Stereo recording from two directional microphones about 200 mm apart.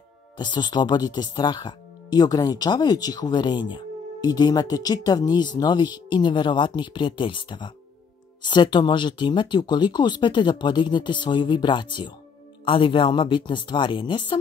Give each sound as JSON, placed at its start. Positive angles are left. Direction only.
{"t": 0.4, "sound": "speech", "side_deg": 20}